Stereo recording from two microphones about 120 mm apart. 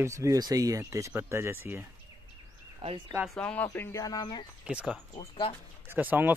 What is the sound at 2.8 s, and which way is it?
Speech, 50° right (ahead or behind).